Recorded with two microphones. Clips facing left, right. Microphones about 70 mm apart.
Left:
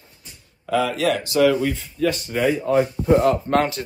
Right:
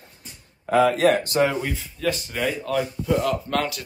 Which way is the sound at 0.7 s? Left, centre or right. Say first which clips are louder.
Right 3 dB; right.